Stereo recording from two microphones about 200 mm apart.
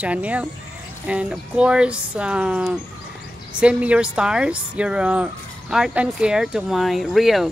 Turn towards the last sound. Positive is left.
turn(degrees=0)  # may be behind; listen again after turning